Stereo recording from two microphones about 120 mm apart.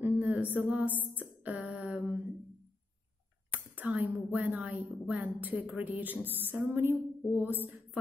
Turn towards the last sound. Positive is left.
turn(degrees=-15)  # may be behind; listen again after turning